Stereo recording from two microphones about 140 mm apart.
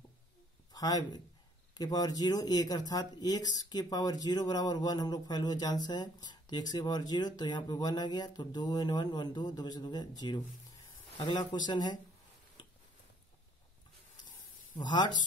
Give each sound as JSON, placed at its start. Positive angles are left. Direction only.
{"t": 0.7, "sound": "speech", "side_deg": 25}
{"t": 14.8, "sound": "speech", "side_deg": 30}